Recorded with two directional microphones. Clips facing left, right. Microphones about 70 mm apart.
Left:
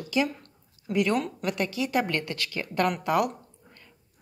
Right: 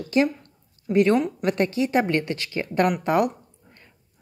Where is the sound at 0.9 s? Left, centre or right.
Right.